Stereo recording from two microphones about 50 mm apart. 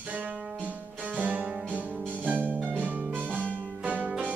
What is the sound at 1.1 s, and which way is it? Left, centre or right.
Music, right.